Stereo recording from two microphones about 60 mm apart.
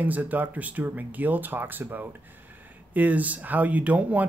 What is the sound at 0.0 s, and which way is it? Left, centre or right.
Speech, right.